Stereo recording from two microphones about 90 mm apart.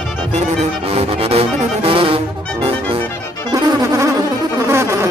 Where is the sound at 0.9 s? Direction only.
90° right.